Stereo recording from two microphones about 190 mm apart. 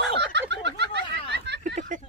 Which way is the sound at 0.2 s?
65° right (ahead or behind).